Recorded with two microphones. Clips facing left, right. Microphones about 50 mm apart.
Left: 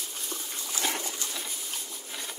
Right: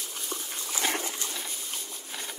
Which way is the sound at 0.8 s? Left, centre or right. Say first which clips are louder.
Right 2 dB; right.